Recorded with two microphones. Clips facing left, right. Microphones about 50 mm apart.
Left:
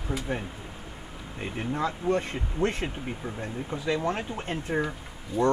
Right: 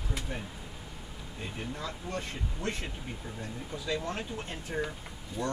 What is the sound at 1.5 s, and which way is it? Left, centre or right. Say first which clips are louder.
Speech: left 10 dB; left.